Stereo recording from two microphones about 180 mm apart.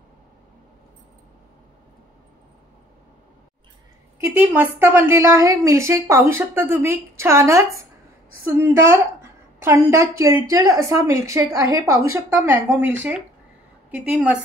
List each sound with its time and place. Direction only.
4.2 s a woman's voice: 10° right (ahead or behind)
13.9 s a woman's voice: 5° right (ahead or behind)